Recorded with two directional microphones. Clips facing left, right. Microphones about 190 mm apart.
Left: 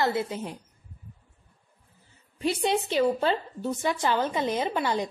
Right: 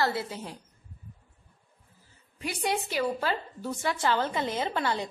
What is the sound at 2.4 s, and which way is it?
A woman's voice, 25° left (ahead or behind).